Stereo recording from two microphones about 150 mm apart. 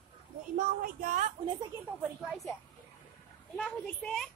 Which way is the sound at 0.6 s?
70° right (ahead or behind).